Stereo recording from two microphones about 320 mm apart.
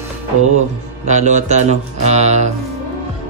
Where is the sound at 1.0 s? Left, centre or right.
Right.